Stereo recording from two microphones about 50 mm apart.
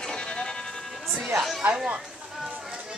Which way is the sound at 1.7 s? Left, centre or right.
Right.